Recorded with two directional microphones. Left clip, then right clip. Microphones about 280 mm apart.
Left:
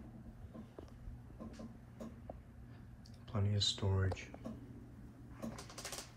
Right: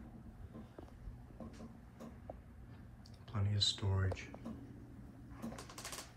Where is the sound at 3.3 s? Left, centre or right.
Centre.